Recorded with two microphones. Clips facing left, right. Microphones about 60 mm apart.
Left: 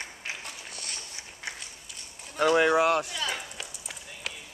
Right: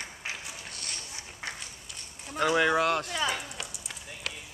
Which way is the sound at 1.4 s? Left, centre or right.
Right.